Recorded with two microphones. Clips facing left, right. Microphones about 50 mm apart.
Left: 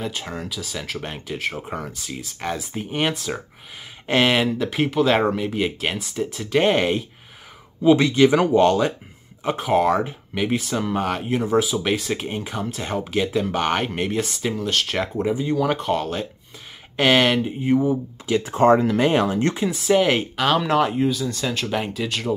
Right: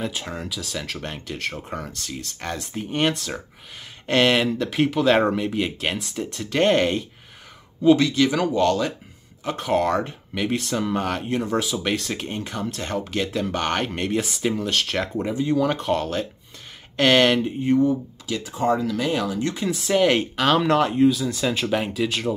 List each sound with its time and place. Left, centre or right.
0.0 s speech: centre
8.0 s speech: left
9.6 s speech: centre
18.2 s speech: left
18.5 s speech: left
19.7 s speech: centre